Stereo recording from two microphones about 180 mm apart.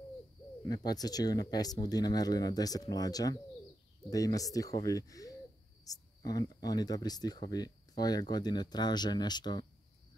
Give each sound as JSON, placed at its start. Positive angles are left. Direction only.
{"t": 0.7, "sound": "speech", "side_deg": 20}